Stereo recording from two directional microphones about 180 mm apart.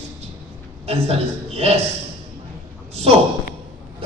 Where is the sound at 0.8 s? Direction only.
35° right (ahead or behind).